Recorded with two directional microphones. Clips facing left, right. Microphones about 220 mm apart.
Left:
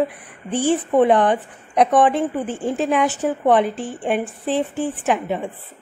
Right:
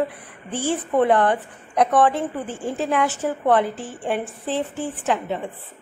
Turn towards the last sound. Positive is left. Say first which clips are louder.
# left 3 dB
turn(degrees=15)  # may be behind; listen again after turning